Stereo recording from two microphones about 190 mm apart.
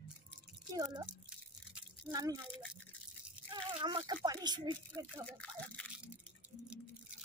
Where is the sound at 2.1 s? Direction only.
20° right (ahead or behind).